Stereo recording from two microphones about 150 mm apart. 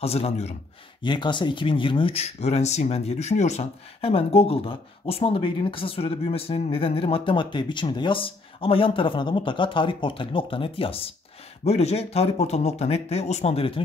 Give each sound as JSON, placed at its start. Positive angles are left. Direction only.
{"t": 0.0, "sound": "speech", "side_deg": 40}
{"t": 1.0, "sound": "speech", "side_deg": 30}